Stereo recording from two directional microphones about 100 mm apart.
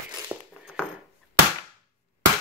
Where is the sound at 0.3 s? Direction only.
25° right (ahead or behind).